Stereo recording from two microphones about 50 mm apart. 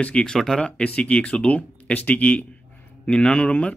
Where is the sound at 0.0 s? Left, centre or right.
Centre.